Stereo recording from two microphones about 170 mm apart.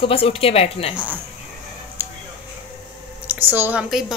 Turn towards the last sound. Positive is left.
turn(degrees=0)  # may be behind; listen again after turning